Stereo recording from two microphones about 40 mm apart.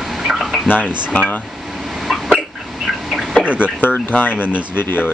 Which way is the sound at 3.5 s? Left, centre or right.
Right.